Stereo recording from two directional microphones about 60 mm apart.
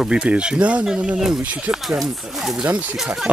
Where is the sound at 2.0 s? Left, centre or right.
Centre.